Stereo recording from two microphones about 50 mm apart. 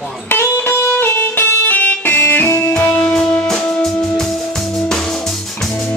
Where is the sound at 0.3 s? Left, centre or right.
Left.